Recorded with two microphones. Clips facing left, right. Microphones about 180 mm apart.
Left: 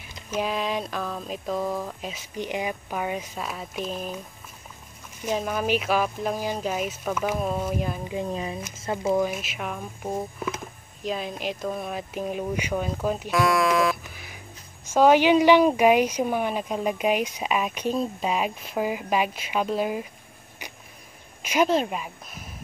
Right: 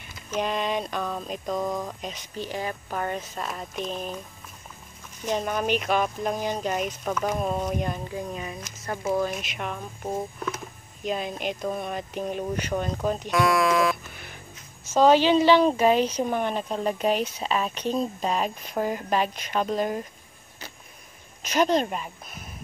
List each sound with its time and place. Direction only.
0.0 s speech: 5° left (ahead or behind)
2.3 s speech: 15° left (ahead or behind)
5.2 s speech: 5° left (ahead or behind)
8.0 s speech: 20° left (ahead or behind)
8.3 s speech: 30° left (ahead or behind)
8.9 s speech: 20° left (ahead or behind)
9.3 s speech: 5° left (ahead or behind)
21.4 s speech: 10° left (ahead or behind)